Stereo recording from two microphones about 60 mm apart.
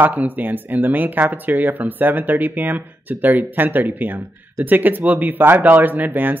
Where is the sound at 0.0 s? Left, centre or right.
Right.